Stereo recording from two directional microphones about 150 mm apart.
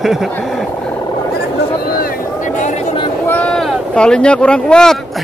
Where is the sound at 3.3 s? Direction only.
5° left (ahead or behind).